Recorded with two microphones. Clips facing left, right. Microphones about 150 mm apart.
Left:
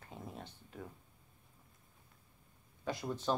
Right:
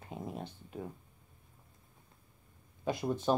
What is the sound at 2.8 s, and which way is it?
Speech, 15° right (ahead or behind).